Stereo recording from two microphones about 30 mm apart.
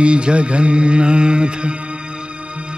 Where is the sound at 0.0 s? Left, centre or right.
Right.